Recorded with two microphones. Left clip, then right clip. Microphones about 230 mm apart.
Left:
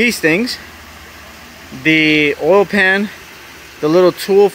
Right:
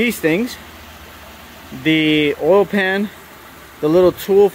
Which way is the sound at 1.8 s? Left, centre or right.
Centre.